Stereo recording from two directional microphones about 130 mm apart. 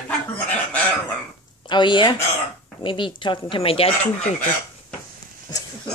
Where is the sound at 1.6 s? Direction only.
35° left (ahead or behind).